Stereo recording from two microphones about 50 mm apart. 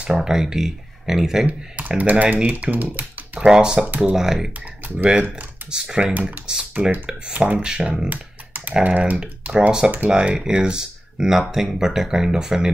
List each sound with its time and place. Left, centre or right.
0.0 s speech: right
0.3 s speech: centre
1.4 s speech: right
3.3 s speech: centre
3.8 s speech: right
4.1 s speech: centre
4.9 s speech: right
6.8 s speech: right
7.5 s speech: centre
8.1 s typing: right
8.8 s speech: right
9.5 s speech: centre